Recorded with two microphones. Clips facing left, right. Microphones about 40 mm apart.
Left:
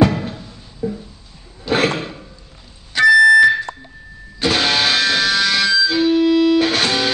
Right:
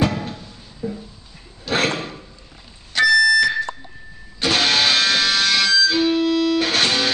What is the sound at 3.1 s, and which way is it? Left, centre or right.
Fire alarm, centre.